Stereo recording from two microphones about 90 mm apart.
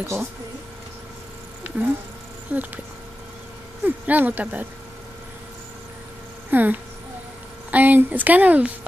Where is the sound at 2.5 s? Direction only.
20° right (ahead or behind).